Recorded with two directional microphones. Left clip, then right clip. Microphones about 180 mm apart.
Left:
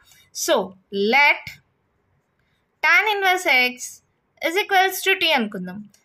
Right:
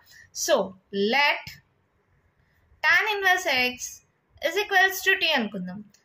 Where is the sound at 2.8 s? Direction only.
50° left (ahead or behind).